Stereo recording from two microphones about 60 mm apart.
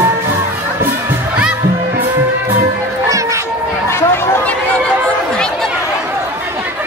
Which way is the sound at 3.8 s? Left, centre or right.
Left.